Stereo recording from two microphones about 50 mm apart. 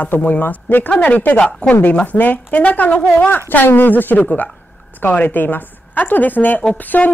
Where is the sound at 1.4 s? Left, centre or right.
Centre.